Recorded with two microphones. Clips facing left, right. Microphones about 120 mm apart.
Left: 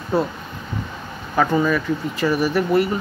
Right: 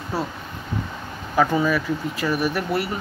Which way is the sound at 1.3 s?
5° right (ahead or behind).